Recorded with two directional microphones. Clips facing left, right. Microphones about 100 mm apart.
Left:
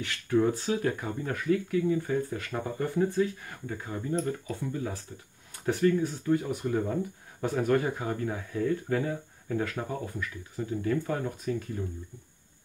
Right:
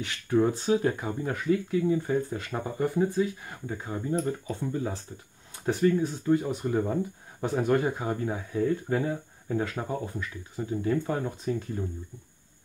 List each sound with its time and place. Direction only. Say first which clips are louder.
0.0 s speech: right 1 dB; 20° right (ahead or behind)